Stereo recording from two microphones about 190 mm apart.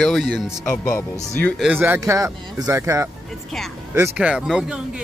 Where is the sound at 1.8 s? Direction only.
15° right (ahead or behind).